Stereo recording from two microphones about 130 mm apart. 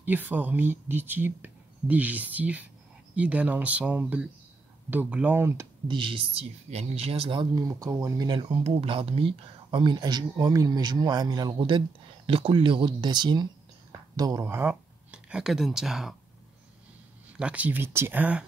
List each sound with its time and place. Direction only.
0.0 s speech: 15° right (ahead or behind)
5.9 s speech: 40° right (ahead or behind)
7.5 s speech: 25° right (ahead or behind)
8.3 s speech: 40° right (ahead or behind); by 16.2 s 5° right (ahead or behind)
17.4 s speech: 10° right (ahead or behind)